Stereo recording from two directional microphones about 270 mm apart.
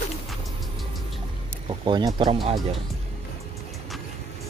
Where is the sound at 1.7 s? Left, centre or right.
Centre.